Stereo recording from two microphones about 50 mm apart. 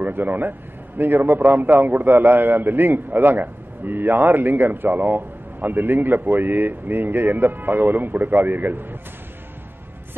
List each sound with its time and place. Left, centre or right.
0.0 s a man's voice: right
1.4 s a man's voice: right
1.9 s a man's voice: right
4.0 s a man's voice: right
4.3 s a man's voice: right